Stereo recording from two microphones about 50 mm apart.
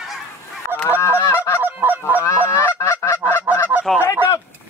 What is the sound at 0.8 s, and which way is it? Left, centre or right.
Goose, left.